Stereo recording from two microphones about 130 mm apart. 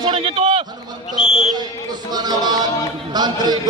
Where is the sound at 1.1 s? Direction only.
5° right (ahead or behind).